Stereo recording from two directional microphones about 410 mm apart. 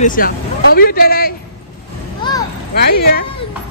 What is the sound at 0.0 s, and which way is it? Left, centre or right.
Speech, centre.